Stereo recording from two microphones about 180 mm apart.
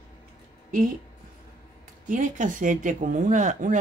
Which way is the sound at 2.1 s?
45° right (ahead or behind).